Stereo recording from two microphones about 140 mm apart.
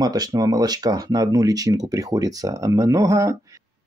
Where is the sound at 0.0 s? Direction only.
25° right (ahead or behind).